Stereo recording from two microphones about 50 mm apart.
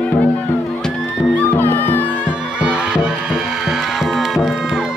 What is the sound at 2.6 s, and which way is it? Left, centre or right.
Music, right.